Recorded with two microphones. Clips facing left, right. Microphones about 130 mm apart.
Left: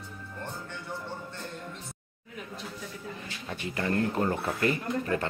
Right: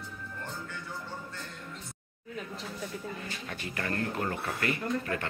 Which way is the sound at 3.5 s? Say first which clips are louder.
Left 6 dB; 20° left (ahead or behind).